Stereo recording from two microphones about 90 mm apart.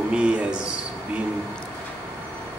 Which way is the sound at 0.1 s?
10° right (ahead or behind).